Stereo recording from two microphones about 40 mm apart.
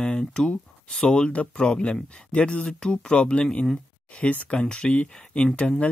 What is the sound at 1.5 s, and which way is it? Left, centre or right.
Speech, left.